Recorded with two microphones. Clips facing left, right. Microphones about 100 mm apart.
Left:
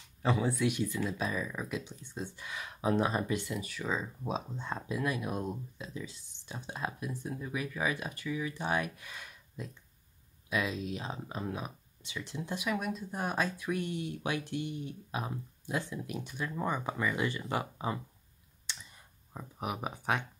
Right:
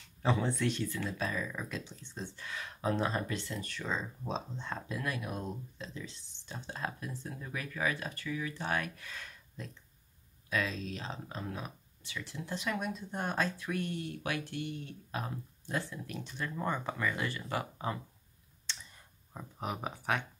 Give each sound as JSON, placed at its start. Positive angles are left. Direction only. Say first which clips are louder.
{"t": 0.2, "sound": "speech", "louder": "left 1 dB", "side_deg": 5}
{"t": 12.6, "sound": "speech", "louder": "left 2 dB", "side_deg": 5}
{"t": 18.7, "sound": "a sound", "louder": "even", "side_deg": 15}
{"t": 19.3, "sound": "speech", "louder": "left 1 dB", "side_deg": 10}